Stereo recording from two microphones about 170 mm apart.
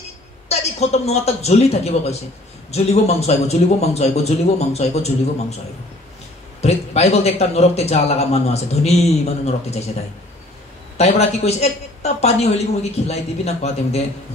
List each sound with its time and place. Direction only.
0.5 s a man's voice: 40° left (ahead or behind)
6.6 s a man's voice: 40° left (ahead or behind)
11.0 s a man's voice: 40° left (ahead or behind)